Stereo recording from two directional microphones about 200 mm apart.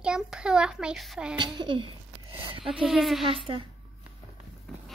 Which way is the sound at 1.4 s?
25° right (ahead or behind).